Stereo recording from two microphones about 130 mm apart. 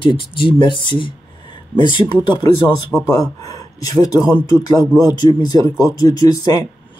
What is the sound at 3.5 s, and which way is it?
Speech, 30° left (ahead or behind).